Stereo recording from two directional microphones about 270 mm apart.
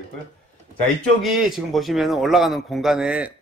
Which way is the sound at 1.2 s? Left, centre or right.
Centre.